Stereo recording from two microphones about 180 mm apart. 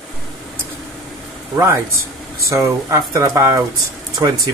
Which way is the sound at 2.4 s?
15° right (ahead or behind).